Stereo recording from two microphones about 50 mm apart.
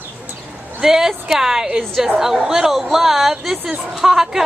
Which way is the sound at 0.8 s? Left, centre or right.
Centre.